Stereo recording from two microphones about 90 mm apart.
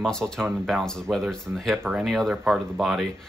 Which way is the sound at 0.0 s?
5° left (ahead or behind).